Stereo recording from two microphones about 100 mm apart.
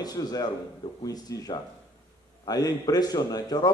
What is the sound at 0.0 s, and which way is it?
Speech, 40° left (ahead or behind).